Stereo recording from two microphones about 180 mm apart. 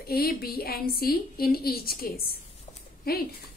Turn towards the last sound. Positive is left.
turn(degrees=55)  # may be behind; listen again after turning